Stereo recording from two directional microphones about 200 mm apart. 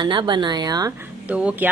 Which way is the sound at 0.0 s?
20° right (ahead or behind).